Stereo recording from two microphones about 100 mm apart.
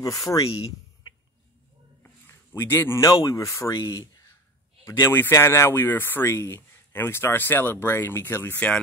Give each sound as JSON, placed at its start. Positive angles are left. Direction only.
{"t": 0.0, "sound": "speech", "side_deg": 35}
{"t": 2.2, "sound": "speech", "side_deg": 25}
{"t": 5.0, "sound": "speech", "side_deg": 25}